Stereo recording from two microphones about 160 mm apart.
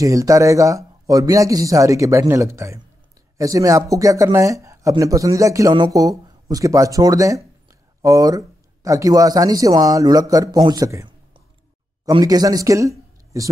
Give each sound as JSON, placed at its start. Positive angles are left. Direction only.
{"t": 0.0, "sound": "speech", "side_deg": -20}
{"t": 12.1, "sound": "speech", "side_deg": -25}